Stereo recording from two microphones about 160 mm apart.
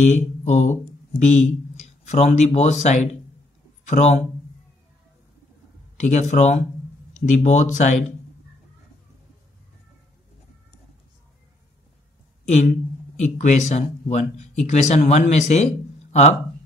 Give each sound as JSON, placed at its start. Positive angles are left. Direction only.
{"t": 0.0, "sound": "speech", "side_deg": 50}
{"t": 5.9, "sound": "speech", "side_deg": 45}
{"t": 12.4, "sound": "speech", "side_deg": 45}